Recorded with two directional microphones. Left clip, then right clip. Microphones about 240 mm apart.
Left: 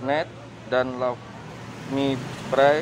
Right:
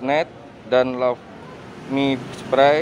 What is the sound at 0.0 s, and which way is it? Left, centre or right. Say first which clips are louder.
Speech: right 4 dB; right.